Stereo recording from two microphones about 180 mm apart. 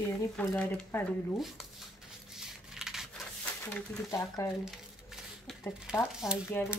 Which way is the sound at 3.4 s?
10° left (ahead or behind).